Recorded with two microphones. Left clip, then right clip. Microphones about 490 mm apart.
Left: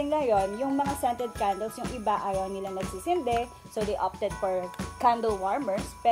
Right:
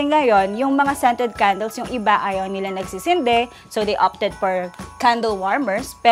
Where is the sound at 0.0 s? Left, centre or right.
Right.